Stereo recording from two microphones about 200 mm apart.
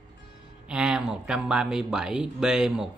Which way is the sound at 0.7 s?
5° right (ahead or behind).